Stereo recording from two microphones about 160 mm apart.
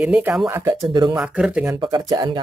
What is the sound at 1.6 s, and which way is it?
Speech, 25° right (ahead or behind).